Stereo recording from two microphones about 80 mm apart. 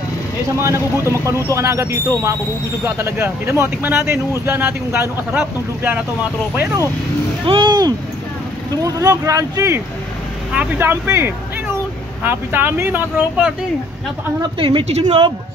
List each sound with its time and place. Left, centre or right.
0.6 s speech: right
7.4 s speech: right
8.8 s speech: right
10.5 s speech: centre
10.8 s speech: right
14.6 s speech: right